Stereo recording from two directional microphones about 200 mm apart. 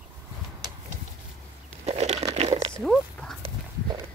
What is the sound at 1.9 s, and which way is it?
Crumpling, 30° right (ahead or behind).